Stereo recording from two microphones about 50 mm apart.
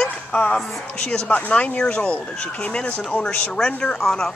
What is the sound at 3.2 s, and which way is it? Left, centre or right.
Speech, left.